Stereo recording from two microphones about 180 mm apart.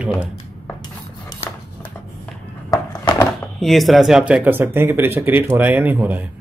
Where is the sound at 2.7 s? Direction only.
20° left (ahead or behind).